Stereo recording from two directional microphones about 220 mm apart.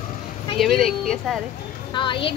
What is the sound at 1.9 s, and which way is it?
Speech, 20° left (ahead or behind).